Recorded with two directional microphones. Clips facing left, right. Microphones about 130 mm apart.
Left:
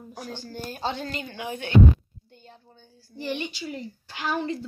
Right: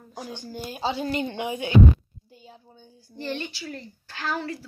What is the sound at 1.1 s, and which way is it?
Speech, 25° right (ahead or behind).